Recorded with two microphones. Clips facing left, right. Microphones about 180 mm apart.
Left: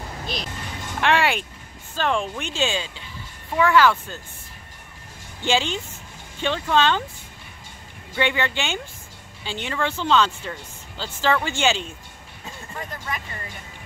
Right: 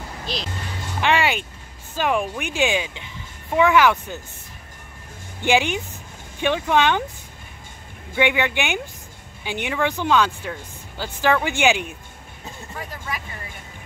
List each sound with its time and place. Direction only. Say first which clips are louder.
1.0 s speech: even; centre (ahead or behind); by 4.2 s 15° right (ahead or behind)
5.4 s speech: right 3 dB; 15° right (ahead or behind)
8.2 s speech: right 3 dB; 15° right (ahead or behind)